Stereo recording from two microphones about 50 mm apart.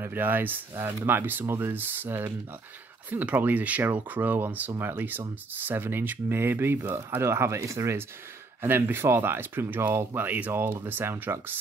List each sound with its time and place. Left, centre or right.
0.0 s speech: right
7.2 s speech: right
8.6 s speech: right